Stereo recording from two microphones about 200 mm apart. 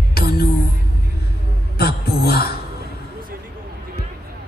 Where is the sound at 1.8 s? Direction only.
50° left (ahead or behind).